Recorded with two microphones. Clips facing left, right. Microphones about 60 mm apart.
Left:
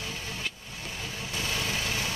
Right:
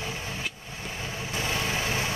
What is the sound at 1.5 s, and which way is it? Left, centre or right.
Vehicle, right.